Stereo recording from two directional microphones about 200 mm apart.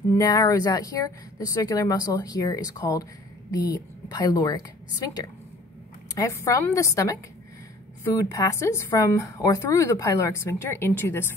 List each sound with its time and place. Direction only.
0.2 s speech: 20° left (ahead or behind)
6.1 s speech: 15° left (ahead or behind)
8.2 s speech: 15° left (ahead or behind)